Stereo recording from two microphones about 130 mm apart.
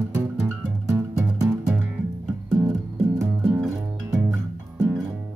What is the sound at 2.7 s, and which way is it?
Music, 15° right (ahead or behind).